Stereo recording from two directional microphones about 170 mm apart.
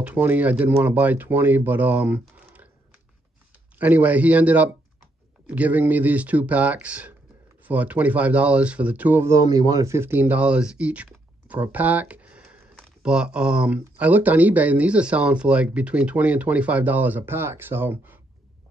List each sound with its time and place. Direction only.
0.0 s speech: 10° right (ahead or behind)
3.7 s speech: 10° right (ahead or behind)